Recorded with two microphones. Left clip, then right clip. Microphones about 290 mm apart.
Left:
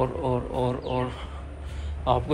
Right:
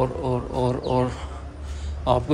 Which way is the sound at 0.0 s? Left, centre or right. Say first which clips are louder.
Right 2 dB; centre.